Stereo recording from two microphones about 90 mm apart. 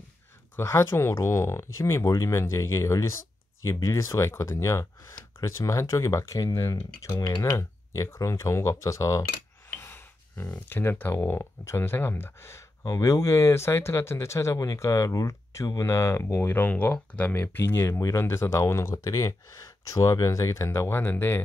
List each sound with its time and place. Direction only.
0.6 s speech: 30° left (ahead or behind)
9.8 s gasp: 25° left (ahead or behind)
10.7 s speech: 25° left (ahead or behind)
15.8 s speech: 30° left (ahead or behind)